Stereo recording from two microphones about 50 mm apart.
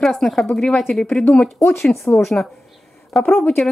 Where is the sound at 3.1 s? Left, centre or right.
Centre.